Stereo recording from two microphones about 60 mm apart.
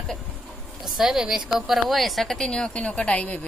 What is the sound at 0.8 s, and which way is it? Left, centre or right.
A woman's voice, centre.